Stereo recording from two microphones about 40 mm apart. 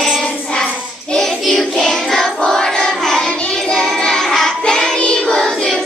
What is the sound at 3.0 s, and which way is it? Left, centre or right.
Child singing, centre.